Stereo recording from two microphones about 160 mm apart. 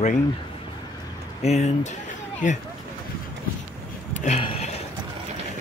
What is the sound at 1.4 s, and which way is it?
Speech, 45° left (ahead or behind).